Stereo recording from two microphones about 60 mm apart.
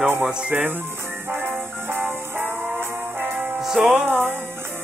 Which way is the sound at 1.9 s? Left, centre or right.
Right.